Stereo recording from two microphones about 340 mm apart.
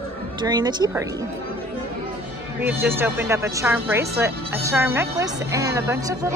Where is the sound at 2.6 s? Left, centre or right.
Centre.